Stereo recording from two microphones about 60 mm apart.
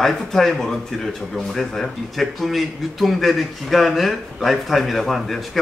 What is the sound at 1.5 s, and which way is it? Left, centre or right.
A man's voice, centre.